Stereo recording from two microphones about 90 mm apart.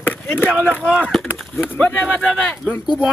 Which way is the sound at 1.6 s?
20° left (ahead or behind).